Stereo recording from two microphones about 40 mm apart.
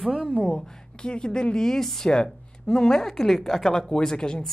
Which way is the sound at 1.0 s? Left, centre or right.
Left.